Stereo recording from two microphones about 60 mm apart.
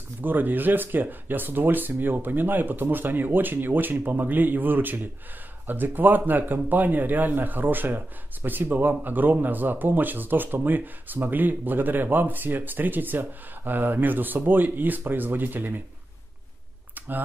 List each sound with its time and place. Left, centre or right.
0.2 s a man's voice: right